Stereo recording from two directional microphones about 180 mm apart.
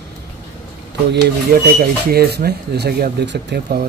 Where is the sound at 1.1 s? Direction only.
60° right (ahead or behind).